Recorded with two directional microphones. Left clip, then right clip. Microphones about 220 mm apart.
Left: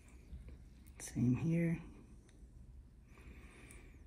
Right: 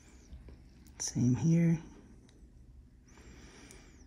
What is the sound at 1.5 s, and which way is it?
Speech, 40° right (ahead or behind).